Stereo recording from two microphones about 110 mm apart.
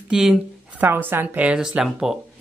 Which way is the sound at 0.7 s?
20° right (ahead or behind).